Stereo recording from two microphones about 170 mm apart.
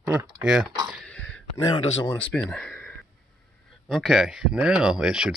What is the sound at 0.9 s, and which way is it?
Throat clearing, 5° left (ahead or behind).